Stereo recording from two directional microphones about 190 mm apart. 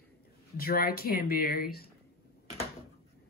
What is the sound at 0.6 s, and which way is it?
Speech, 50° left (ahead or behind).